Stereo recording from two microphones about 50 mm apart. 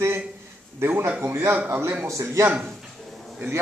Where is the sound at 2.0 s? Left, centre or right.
Right.